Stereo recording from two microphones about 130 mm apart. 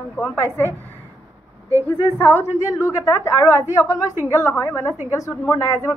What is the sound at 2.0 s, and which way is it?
A woman's voice, 15° left (ahead or behind).